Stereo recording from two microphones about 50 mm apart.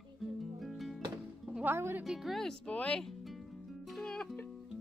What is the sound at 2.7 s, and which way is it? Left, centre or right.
Speech, left.